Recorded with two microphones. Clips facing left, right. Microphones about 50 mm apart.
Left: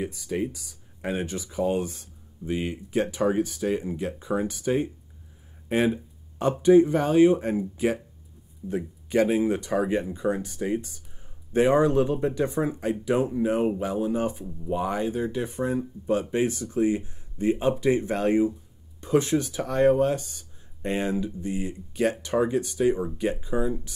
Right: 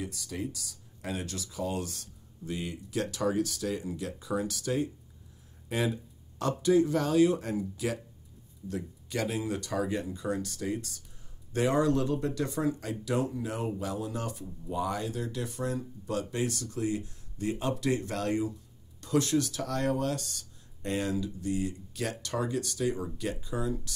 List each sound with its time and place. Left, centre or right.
0.1 s speech: left